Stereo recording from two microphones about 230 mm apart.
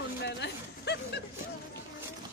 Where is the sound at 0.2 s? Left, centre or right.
Left.